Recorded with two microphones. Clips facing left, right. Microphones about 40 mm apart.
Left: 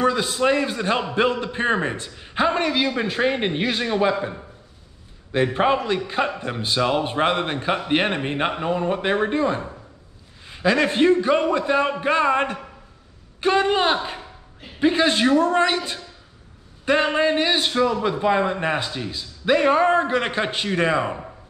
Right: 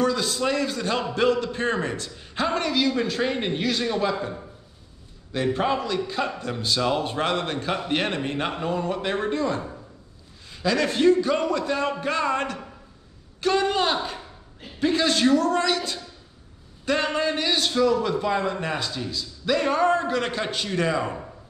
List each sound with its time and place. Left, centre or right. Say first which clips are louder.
0.0 s a man's voice: left 3 dB; left